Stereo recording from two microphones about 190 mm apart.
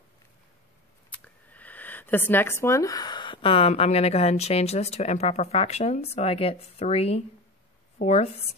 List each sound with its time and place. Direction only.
1.1 s a woman's voice: 10° left (ahead or behind); by 8.3 s 35° left (ahead or behind)